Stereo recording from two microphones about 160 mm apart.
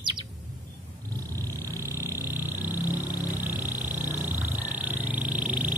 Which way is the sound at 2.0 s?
15° right (ahead or behind).